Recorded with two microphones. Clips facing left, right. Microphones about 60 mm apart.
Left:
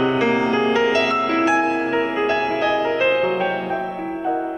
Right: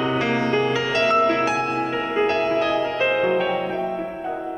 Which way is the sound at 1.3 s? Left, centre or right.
Centre.